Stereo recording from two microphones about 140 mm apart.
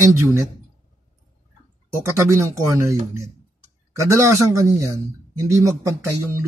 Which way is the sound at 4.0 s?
20° right (ahead or behind).